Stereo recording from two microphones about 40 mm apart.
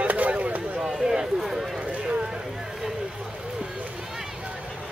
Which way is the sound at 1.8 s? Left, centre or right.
Right.